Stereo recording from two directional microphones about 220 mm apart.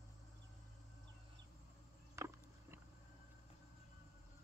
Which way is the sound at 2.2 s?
15° right (ahead or behind).